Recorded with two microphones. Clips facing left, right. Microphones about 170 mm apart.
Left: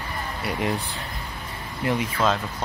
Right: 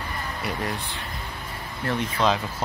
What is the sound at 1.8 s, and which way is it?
Speech, 15° left (ahead or behind).